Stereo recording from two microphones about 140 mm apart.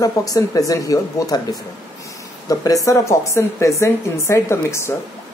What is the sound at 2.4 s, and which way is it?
Speech, 25° left (ahead or behind).